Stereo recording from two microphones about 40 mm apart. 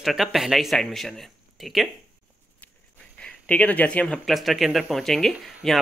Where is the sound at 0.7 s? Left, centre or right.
Centre.